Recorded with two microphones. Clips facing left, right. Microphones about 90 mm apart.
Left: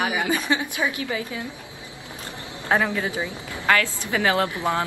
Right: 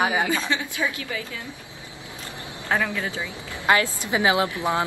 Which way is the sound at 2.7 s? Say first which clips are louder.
Left 3 dB; 20° left (ahead or behind).